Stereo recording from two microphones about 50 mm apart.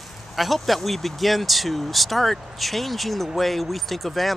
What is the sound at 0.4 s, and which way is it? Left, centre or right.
Speech, centre.